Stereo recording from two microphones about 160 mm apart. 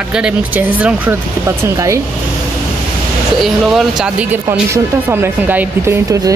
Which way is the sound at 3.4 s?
Centre (ahead or behind).